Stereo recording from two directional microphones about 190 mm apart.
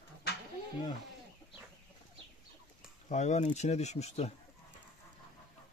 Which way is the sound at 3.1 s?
35° left (ahead or behind).